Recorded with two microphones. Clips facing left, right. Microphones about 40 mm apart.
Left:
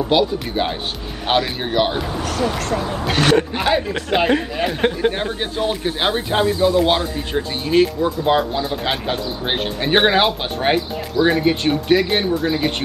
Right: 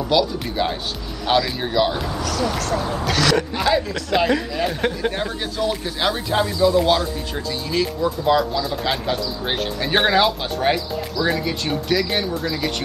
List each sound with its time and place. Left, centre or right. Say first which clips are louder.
0.1 s speech: left 1 dB; left
4.6 s speech: left 5 dB; left